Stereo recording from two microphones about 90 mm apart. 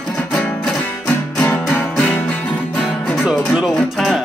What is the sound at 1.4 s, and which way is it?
Music, 25° left (ahead or behind).